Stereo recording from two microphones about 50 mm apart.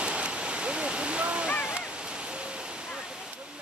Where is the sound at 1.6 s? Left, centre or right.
Centre.